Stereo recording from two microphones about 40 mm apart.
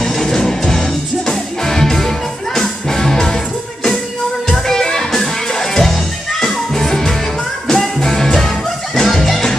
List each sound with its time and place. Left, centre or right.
0.0 s music: centre
4.5 s music: centre